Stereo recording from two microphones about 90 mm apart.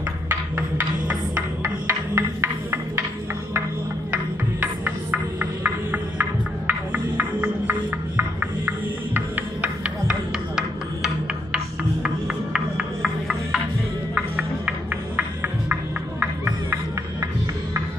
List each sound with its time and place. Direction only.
0.3 s music: 20° right (ahead or behind)
2.1 s music: 25° right (ahead or behind)
4.1 s music: 15° right (ahead or behind)
12.5 s music: 5° right (ahead or behind)
15.1 s music: 15° right (ahead or behind)